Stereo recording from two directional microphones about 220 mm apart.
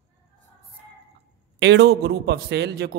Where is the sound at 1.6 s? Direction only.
50° right (ahead or behind).